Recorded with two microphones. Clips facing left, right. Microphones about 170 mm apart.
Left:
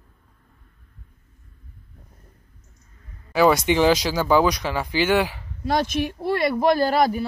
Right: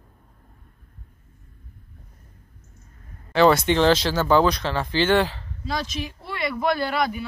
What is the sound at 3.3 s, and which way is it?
Speech, 10° left (ahead or behind).